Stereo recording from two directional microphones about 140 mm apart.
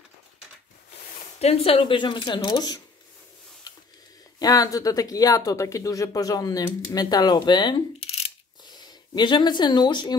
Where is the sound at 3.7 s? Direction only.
30° left (ahead or behind).